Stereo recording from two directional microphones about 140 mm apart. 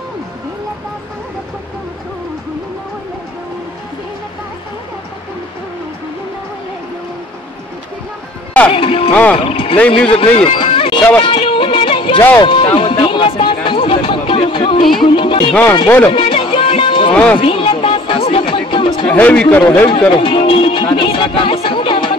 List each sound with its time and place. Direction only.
8.7 s music: 40° left (ahead or behind)
9.1 s speech: 10° left (ahead or behind)
9.4 s music: 40° left (ahead or behind)
9.8 s speech: 10° left (ahead or behind)
10.0 s speech: 40° left (ahead or behind)
11.2 s music: 40° left (ahead or behind)
17.1 s speech: 10° left (ahead or behind)
17.4 s music: 40° left (ahead or behind)
19.0 s speech: 10° left (ahead or behind)
20.1 s music: 40° left (ahead or behind)